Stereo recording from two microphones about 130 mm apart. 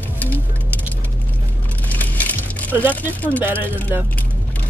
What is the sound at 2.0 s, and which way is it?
Music, 15° left (ahead or behind).